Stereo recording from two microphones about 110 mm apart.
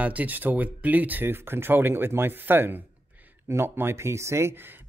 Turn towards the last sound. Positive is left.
turn(degrees=-20)  # may be behind; listen again after turning